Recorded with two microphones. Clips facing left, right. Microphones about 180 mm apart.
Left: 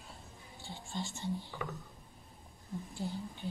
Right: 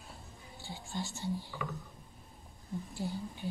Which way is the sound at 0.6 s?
Centre (ahead or behind).